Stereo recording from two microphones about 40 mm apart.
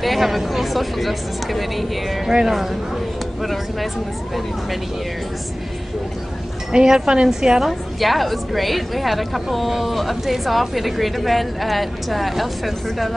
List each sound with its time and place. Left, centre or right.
0.0 s a woman's voice: centre
6.7 s a woman's voice: centre
8.0 s a woman's voice: centre